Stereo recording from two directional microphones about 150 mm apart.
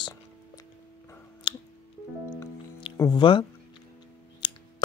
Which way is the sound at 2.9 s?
25° left (ahead or behind).